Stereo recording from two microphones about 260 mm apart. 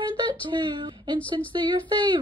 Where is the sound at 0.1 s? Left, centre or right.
Centre.